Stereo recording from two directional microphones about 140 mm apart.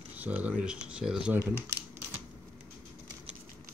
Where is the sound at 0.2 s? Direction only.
10° right (ahead or behind).